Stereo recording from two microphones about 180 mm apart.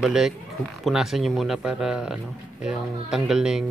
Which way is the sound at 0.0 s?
Centre (ahead or behind).